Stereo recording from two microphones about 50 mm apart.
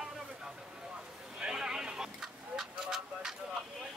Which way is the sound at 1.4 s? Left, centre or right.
Centre.